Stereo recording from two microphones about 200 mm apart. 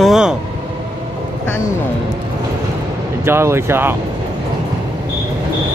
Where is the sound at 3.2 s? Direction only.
10° right (ahead or behind).